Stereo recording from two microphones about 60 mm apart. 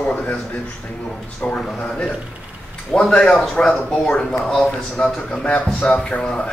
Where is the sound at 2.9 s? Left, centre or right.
Centre.